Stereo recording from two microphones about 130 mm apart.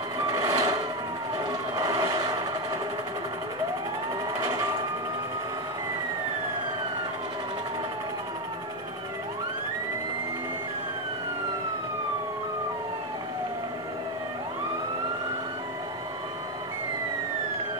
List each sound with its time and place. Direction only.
0.5 s vehicle: 30° right (ahead or behind)
1.8 s vehicle: 30° right (ahead or behind)